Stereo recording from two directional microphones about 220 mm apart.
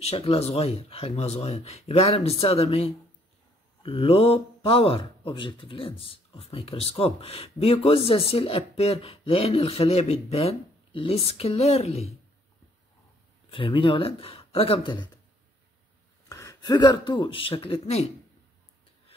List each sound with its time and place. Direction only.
0.0 s speech: 25° left (ahead or behind)
13.5 s speech: 25° left (ahead or behind)
16.3 s speech: 15° left (ahead or behind)